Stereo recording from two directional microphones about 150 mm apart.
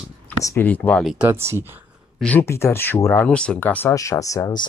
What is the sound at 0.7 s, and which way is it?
Speech, 10° left (ahead or behind).